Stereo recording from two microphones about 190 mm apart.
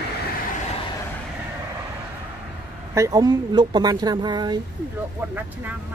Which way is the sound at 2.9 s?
15° right (ahead or behind).